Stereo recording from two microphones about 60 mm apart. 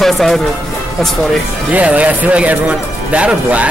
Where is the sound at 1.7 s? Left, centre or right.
Right.